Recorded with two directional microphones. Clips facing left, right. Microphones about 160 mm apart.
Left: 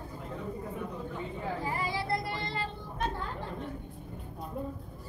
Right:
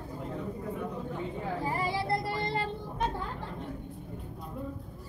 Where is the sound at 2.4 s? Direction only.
50° right (ahead or behind).